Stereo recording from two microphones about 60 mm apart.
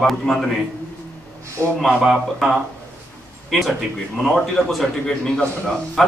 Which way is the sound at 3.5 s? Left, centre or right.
Centre.